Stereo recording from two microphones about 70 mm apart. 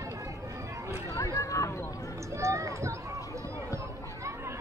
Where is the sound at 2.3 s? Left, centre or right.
Right.